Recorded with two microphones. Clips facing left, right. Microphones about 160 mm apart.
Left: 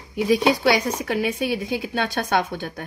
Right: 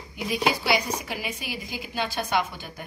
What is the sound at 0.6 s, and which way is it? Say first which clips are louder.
Speech: left 6 dB; 65° left (ahead or behind).